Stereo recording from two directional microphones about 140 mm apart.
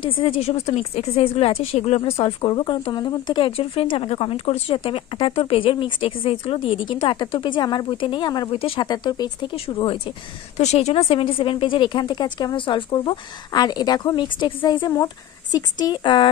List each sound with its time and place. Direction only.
0.2 s a woman's voice: 45° left (ahead or behind)
10.6 s a woman's voice: 50° left (ahead or behind)